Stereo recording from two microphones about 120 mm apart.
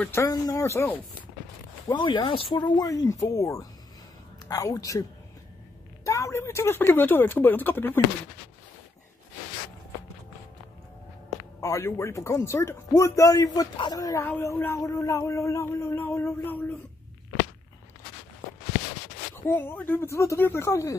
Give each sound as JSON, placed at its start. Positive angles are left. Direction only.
{"t": 0.0, "sound": "a man's voice", "side_deg": 20}
{"t": 1.9, "sound": "speech", "side_deg": 40}
{"t": 2.5, "sound": "a man's voice", "side_deg": 35}
{"t": 6.0, "sound": "speech", "side_deg": 25}
{"t": 11.6, "sound": "a man's voice", "side_deg": 25}
{"t": 19.3, "sound": "a man's voice", "side_deg": 20}